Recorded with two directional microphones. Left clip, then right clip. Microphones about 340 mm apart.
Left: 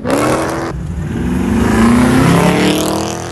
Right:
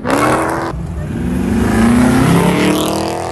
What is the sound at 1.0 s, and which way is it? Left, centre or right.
Vehicle, centre.